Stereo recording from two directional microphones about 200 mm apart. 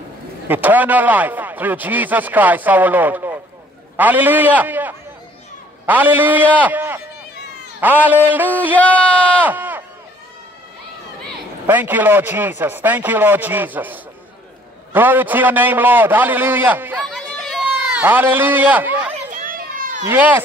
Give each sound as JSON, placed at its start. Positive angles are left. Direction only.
{"t": 0.5, "sound": "a man's voice", "side_deg": -10}
{"t": 8.7, "sound": "speech", "side_deg": 5}
{"t": 9.2, "sound": "a sound", "side_deg": -10}
{"t": 11.6, "sound": "a man's voice", "side_deg": -10}
{"t": 19.3, "sound": "children playing", "side_deg": -45}
{"t": 20.1, "sound": "speech", "side_deg": -10}